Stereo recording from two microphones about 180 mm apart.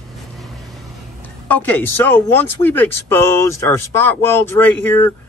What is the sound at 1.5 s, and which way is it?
Speech, 10° left (ahead or behind).